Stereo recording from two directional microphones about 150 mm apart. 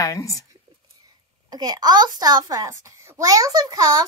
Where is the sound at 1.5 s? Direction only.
25° right (ahead or behind).